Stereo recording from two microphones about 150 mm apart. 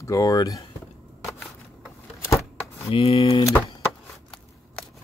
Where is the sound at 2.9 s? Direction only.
40° left (ahead or behind).